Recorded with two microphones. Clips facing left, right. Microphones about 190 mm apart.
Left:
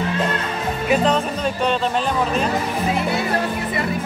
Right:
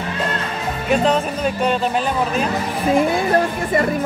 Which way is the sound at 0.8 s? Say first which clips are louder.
Right 1 dB; 5° right (ahead or behind).